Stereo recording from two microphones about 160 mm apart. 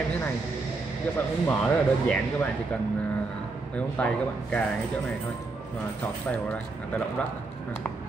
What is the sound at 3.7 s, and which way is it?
Speech, 5° left (ahead or behind).